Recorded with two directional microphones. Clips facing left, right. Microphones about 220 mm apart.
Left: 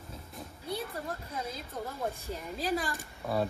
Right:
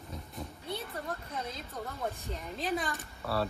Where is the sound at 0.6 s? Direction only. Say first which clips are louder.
Left 4 dB; centre (ahead or behind).